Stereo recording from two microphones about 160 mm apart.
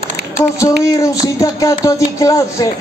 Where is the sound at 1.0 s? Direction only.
20° left (ahead or behind).